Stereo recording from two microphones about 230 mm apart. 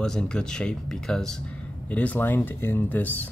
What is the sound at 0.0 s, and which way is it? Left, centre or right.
Speech, centre.